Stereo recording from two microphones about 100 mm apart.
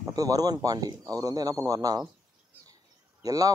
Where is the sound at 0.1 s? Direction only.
35° right (ahead or behind).